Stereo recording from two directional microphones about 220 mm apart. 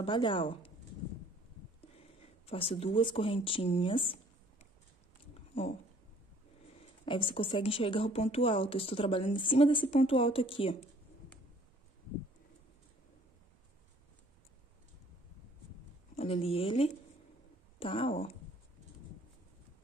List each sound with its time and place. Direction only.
0.0 s speech: 20° left (ahead or behind)
2.4 s speech: 25° left (ahead or behind)
7.1 s speech: 25° left (ahead or behind)
16.2 s speech: 25° left (ahead or behind)